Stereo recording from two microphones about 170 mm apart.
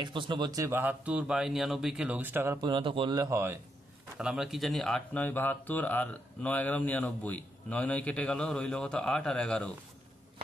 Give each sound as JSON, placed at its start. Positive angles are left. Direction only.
{"t": 0.0, "sound": "speech", "side_deg": -30}
{"t": 2.6, "sound": "speech", "side_deg": -30}
{"t": 4.2, "sound": "speech", "side_deg": -5}